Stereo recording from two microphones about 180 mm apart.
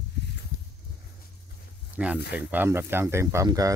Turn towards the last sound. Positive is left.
turn(degrees=-20)  # may be behind; listen again after turning